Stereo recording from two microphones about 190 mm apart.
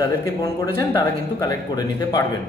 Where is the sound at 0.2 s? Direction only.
15° left (ahead or behind).